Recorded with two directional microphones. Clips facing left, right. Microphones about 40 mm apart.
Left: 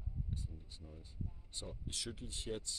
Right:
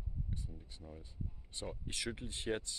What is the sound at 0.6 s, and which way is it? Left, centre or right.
Speech, right.